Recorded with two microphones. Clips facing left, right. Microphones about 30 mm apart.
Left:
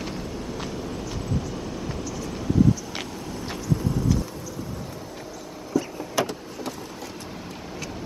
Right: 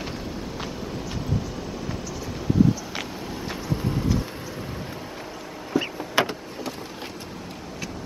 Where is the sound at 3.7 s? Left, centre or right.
Right.